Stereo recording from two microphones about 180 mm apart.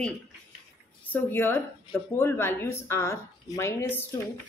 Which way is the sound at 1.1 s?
10° left (ahead or behind).